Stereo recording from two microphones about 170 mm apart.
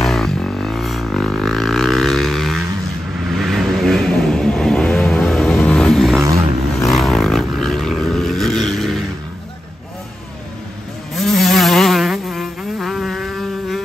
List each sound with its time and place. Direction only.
0.0 s music: centre (ahead or behind)
3.3 s vehicle: centre (ahead or behind)
11.1 s insect: centre (ahead or behind)